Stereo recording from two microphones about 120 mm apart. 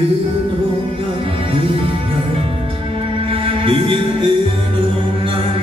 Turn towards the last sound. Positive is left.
turn(degrees=-45)  # may be behind; listen again after turning